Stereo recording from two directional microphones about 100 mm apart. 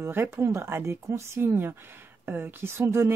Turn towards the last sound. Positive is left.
turn(degrees=-25)  # may be behind; listen again after turning